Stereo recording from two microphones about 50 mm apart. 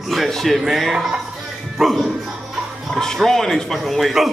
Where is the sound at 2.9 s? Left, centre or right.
Centre.